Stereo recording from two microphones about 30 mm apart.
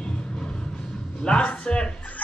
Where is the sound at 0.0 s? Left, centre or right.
Left.